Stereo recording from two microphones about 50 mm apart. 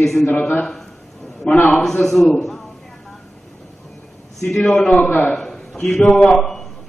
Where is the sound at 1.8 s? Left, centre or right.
Centre.